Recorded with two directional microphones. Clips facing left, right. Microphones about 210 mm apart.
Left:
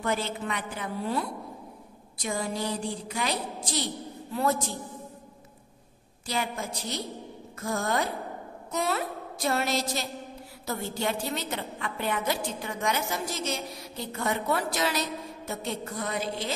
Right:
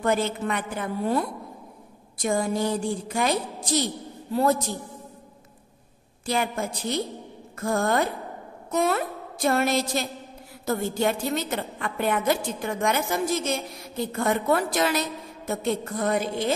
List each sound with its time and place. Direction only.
0.0 s a woman's voice: 50° right (ahead or behind)
4.3 s a man's voice: 35° right (ahead or behind)
6.2 s a woman's voice: 55° right (ahead or behind)